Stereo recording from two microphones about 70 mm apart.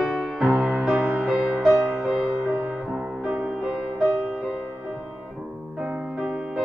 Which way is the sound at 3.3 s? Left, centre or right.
Centre.